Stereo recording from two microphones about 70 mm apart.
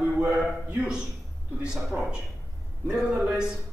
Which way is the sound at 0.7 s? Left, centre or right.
Centre.